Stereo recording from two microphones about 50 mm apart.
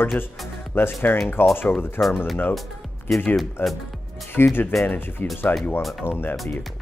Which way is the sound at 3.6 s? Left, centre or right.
Left.